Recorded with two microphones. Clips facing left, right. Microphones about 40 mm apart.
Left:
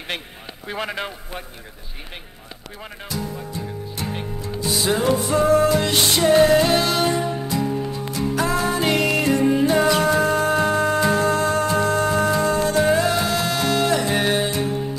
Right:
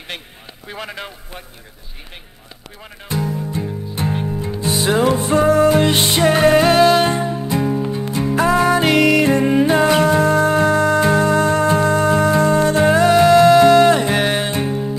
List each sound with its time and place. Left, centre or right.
0.7 s a man's voice: left
3.1 s music: right
10.3 s music: right
11.0 s music: right
11.2 s music: right
13.9 s music: right